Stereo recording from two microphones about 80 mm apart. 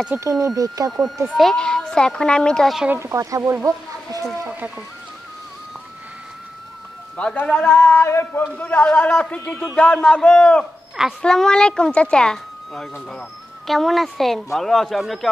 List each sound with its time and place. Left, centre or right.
0.2 s speech: right
0.9 s a woman's voice: centre
3.0 s speech: right
3.6 s a sound: right
7.3 s a woman's voice: centre
7.8 s speech: left
8.5 s a woman's voice: left; by 15.1 s centre